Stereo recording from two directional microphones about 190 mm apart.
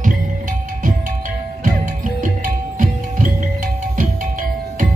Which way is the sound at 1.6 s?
45° right (ahead or behind).